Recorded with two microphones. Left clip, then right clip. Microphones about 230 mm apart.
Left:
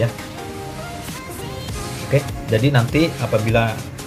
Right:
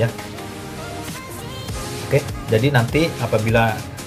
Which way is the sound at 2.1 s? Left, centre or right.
Centre.